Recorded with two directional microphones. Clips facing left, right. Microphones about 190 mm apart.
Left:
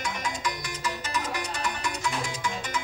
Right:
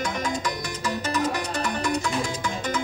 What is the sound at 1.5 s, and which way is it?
Music, 35° right (ahead or behind).